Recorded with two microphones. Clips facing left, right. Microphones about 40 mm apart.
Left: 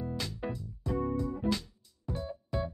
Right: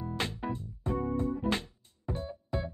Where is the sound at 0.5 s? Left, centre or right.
Right.